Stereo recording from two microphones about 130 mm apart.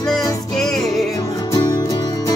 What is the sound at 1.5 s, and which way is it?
Music, 25° left (ahead or behind).